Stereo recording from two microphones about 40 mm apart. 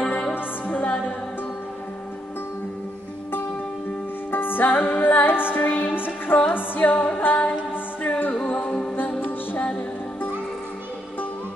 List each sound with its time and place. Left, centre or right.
0.7 s music: left
4.3 s music: left
5.6 s music: left
5.9 s music: left
6.8 s music: left
7.2 s music: left
8.6 s music: centre
8.9 s music: left